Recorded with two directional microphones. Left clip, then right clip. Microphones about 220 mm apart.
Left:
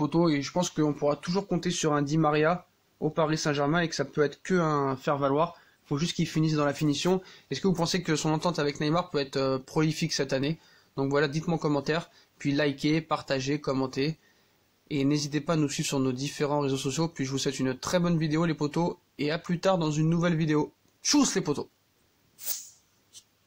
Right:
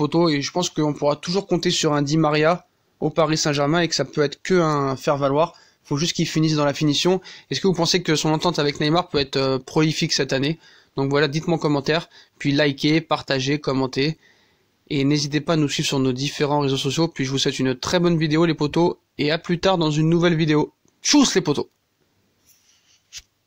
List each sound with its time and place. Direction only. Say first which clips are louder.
0.0 s speech: right 7 dB; 30° right (ahead or behind)